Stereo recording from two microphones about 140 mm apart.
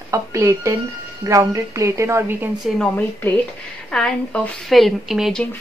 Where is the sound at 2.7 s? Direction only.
10° left (ahead or behind).